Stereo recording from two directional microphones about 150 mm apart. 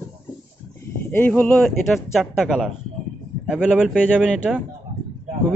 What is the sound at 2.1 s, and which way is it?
Speech, centre (ahead or behind).